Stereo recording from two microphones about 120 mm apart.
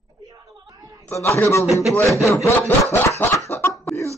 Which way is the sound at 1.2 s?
25° left (ahead or behind).